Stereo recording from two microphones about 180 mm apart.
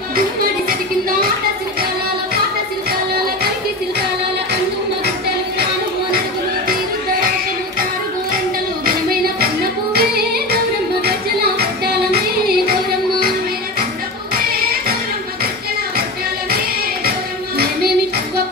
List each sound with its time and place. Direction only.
8.8 s music: 55° right (ahead or behind)